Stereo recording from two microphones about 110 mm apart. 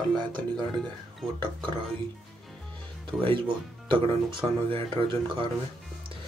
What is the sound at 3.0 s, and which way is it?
Speech, 50° right (ahead or behind).